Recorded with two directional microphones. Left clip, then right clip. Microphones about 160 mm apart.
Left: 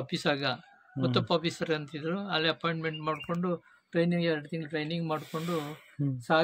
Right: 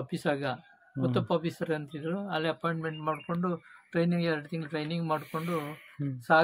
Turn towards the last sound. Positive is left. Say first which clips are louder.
# right 3 dB
turn(degrees=15)  # may be behind; listen again after turning